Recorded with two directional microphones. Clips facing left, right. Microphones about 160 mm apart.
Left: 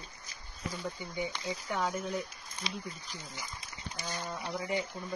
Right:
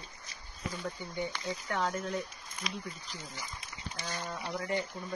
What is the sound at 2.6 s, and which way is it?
Speech, 30° left (ahead or behind).